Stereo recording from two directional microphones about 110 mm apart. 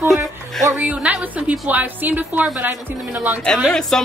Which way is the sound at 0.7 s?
15° right (ahead or behind).